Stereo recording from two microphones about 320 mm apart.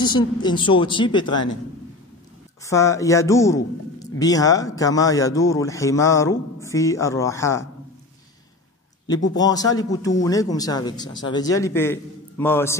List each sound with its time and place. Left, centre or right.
0.0 s speech: centre
2.6 s speech: centre
9.3 s speech: centre